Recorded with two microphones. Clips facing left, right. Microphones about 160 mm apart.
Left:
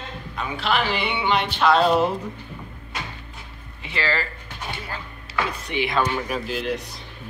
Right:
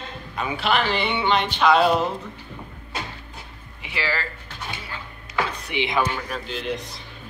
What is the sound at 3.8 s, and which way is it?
Speech, 10° right (ahead or behind).